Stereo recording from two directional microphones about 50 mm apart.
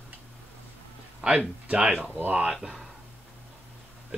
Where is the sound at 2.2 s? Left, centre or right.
Right.